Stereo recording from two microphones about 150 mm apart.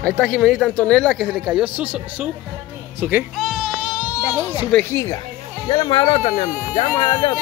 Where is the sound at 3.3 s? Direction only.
Centre (ahead or behind).